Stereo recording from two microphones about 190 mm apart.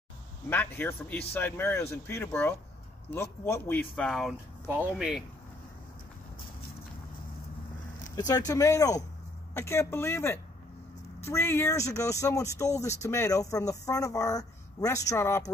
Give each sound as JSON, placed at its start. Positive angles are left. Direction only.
{"t": 0.5, "sound": "speech", "side_deg": 10}
{"t": 8.2, "sound": "speech", "side_deg": 20}